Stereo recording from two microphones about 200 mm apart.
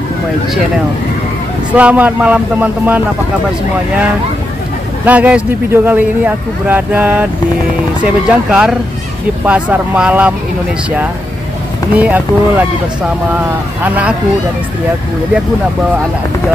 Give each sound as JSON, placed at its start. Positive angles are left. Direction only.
{"t": 1.8, "sound": "speech", "side_deg": -5}
{"t": 5.0, "sound": "speech", "side_deg": -5}
{"t": 12.0, "sound": "speech", "side_deg": -5}
{"t": 13.8, "sound": "speech", "side_deg": -5}